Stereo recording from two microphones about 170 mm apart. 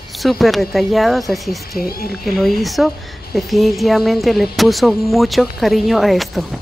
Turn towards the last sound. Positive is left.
turn(degrees=0)  # may be behind; listen again after turning